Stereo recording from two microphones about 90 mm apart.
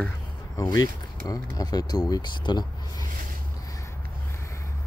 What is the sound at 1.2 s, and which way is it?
Speech, 45° left (ahead or behind).